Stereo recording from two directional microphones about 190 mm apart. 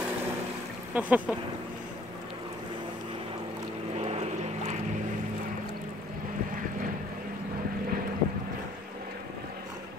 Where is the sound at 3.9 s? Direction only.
35° right (ahead or behind).